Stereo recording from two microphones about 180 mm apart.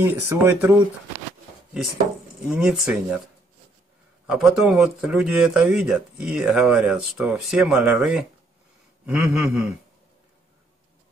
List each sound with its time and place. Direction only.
0.0 s speech: 15° right (ahead or behind)
2.4 s speech: 5° right (ahead or behind)
4.3 s speech: 5° right (ahead or behind)